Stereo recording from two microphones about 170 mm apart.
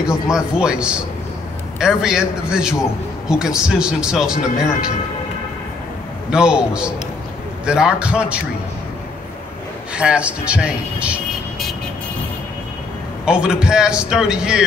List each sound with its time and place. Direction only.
0.0 s a man's voice: 5° right (ahead or behind)
6.3 s a man's voice: 5° right (ahead or behind)
9.9 s speech: 5° right (ahead or behind)
13.2 s a man's voice: 5° right (ahead or behind)